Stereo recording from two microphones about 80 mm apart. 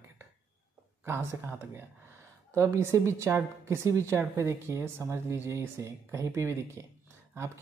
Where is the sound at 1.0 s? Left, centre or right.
Right.